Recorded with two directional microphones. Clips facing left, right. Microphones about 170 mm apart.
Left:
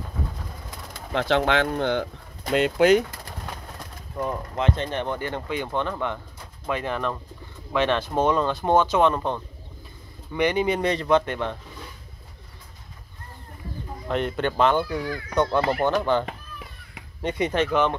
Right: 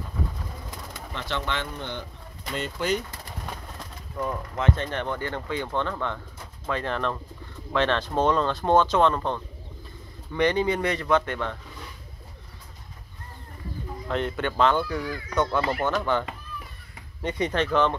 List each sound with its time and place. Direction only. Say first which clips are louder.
1.1 s speech: left 10 dB; 90° left
4.2 s speech: left 2 dB; 20° left (ahead or behind)
10.8 s speech: left 3 dB; 25° left (ahead or behind)
14.0 s speech: left 3 dB; 20° left (ahead or behind)
15.3 s speech: left 3 dB; 15° left (ahead or behind)
17.2 s speech: left 2 dB; 10° left (ahead or behind)